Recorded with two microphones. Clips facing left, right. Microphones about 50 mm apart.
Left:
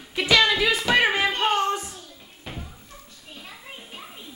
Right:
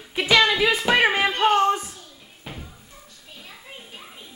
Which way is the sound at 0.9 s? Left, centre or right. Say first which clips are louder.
Right 1 dB; centre.